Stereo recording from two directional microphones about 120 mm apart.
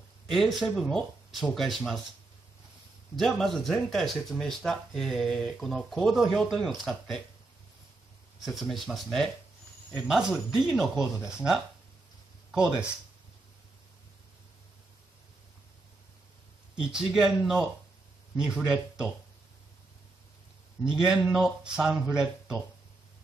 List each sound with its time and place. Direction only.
0.3 s speech: centre (ahead or behind)
3.2 s speech: 5° left (ahead or behind)
8.4 s speech: centre (ahead or behind)
16.7 s speech: 5° right (ahead or behind)
20.9 s speech: 5° right (ahead or behind)